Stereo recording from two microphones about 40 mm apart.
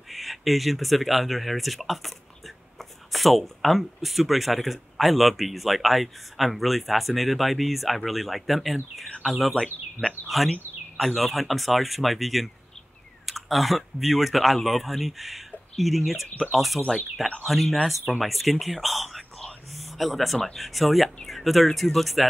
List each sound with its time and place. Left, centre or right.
0.1 s speech: centre